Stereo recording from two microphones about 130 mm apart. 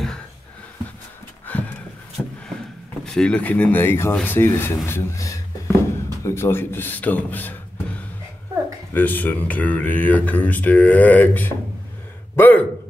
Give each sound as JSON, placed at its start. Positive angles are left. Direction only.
{"t": 1.5, "sound": "horse", "side_deg": 15}
{"t": 2.2, "sound": "a sound", "side_deg": 15}
{"t": 3.1, "sound": "speech", "side_deg": 5}
{"t": 4.8, "sound": "a sound", "side_deg": 20}
{"t": 6.2, "sound": "speech", "side_deg": 20}
{"t": 8.9, "sound": "speech", "side_deg": 15}